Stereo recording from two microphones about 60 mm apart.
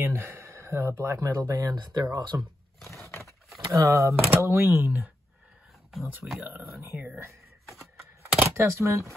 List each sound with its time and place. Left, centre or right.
0.0 s speech: right
2.9 s a sound: left
3.3 s a sound: centre
3.7 s speech: right
5.9 s speech: centre
6.5 s speech: right
8.5 s speech: right